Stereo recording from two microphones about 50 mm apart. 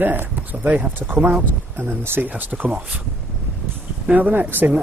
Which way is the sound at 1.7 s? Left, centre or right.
Right.